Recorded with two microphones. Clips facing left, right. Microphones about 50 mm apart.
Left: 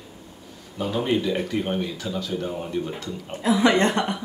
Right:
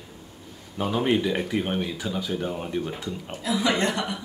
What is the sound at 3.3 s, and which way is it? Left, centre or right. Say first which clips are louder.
Speech: left 6 dB; left.